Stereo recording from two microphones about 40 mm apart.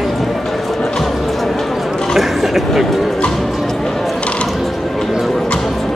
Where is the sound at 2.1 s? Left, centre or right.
Centre.